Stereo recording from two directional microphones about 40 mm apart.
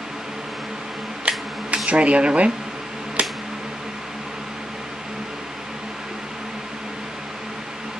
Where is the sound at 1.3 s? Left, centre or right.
Right.